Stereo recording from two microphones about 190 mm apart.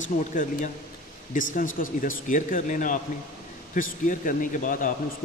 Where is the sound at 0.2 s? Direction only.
40° left (ahead or behind).